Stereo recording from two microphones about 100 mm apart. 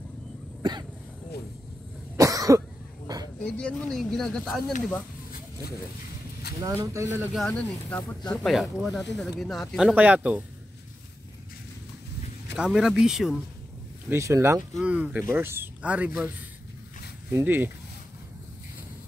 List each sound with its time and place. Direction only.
0.6 s cough: 45° right (ahead or behind)
2.1 s cough: 35° right (ahead or behind)
3.1 s a sound: 45° right (ahead or behind)
3.4 s speech: 10° left (ahead or behind)
6.6 s speech: 35° right (ahead or behind)
7.3 s speech: 5° left (ahead or behind)
9.9 s speech: 15° right (ahead or behind)
12.5 s speech: 5° right (ahead or behind)
14.0 s speech: 30° right (ahead or behind)
14.8 s speech: 10° right (ahead or behind)
15.3 s speech: 25° right (ahead or behind)
17.3 s speech: 25° right (ahead or behind)